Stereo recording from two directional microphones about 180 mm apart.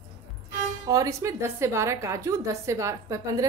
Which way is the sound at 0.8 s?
20° right (ahead or behind).